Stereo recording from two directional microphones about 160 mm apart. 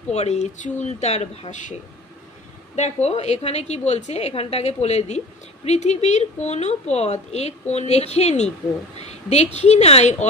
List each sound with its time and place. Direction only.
0.1 s a woman's voice: 45° left (ahead or behind)